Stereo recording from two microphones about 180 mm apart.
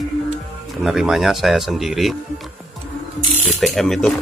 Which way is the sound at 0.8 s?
Centre (ahead or behind).